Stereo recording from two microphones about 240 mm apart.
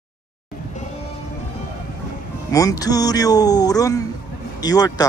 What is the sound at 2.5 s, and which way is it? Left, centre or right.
Speech, centre.